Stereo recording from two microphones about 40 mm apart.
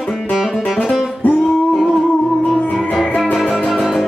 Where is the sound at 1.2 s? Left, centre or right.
Left.